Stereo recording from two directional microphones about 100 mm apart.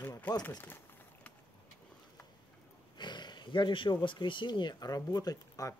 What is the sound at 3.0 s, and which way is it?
Speech, 50° left (ahead or behind).